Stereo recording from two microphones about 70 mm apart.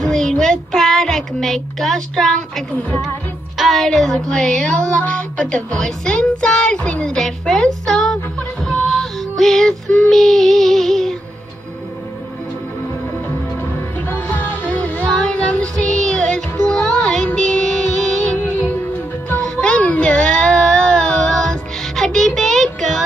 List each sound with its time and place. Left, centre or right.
0.0 s child singing: centre
10.0 s music: centre
13.3 s music: left; by 23.0 s centre